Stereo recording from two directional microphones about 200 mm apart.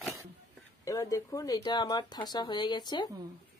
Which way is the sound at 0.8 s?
15° left (ahead or behind).